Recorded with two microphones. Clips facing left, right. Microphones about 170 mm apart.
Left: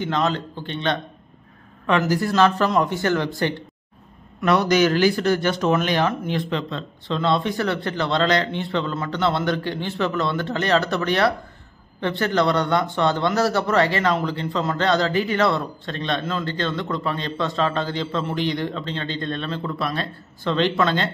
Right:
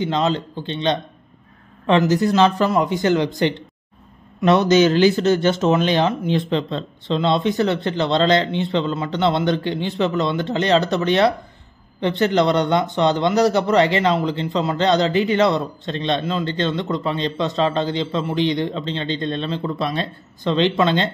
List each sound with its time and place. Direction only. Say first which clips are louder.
0.0 s speech: right 3 dB; 20° right (ahead or behind)